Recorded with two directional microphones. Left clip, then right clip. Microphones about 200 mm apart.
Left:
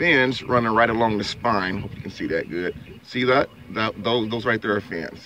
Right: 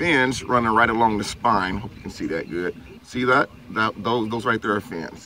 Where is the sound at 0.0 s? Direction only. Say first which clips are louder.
Left 1 dB; 20° left (ahead or behind).